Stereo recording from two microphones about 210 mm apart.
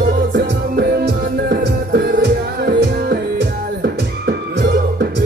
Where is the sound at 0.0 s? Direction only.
50° right (ahead or behind).